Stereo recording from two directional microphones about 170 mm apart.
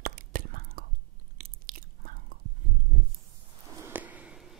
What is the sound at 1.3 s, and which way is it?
Chewing, 60° right (ahead or behind).